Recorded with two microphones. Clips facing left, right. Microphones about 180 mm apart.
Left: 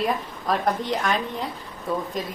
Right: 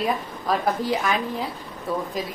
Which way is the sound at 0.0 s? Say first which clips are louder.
Even; centre (ahead or behind).